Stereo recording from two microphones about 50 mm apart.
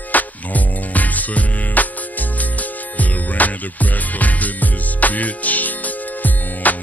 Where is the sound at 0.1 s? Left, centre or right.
Left.